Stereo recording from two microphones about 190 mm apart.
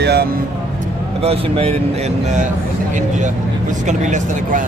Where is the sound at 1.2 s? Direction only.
30° right (ahead or behind).